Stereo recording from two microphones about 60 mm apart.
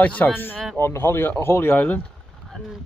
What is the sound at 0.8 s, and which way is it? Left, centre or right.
Speech, left.